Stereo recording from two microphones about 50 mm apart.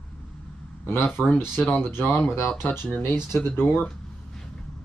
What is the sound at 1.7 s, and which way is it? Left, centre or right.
Speech, left.